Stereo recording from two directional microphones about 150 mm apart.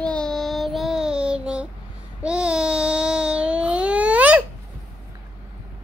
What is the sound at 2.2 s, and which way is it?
Babbling, 5° right (ahead or behind).